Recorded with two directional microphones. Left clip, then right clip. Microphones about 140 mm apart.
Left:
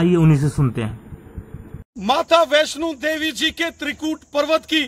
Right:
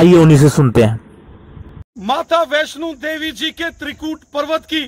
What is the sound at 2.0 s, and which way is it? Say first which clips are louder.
Speech: even; 10° left (ahead or behind).